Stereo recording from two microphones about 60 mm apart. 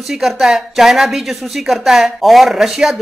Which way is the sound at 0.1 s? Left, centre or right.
Centre.